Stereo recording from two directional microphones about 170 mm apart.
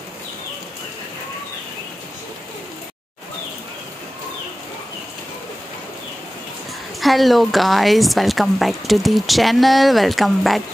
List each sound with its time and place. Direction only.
7.0 s a woman's voice: centre (ahead or behind)